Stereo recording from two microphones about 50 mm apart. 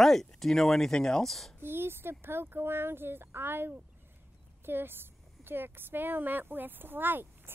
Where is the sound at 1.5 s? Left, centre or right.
Right.